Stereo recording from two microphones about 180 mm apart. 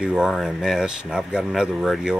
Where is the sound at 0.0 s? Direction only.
5° right (ahead or behind).